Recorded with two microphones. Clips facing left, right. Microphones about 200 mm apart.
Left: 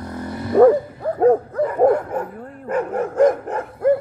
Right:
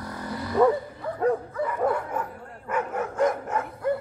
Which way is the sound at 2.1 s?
35° left (ahead or behind).